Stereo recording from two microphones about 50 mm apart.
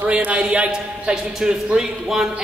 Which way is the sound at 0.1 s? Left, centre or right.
Right.